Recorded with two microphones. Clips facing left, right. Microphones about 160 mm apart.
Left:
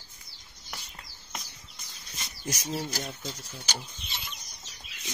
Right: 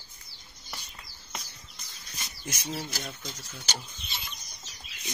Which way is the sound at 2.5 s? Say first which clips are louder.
Left 5 dB; 35° left (ahead or behind).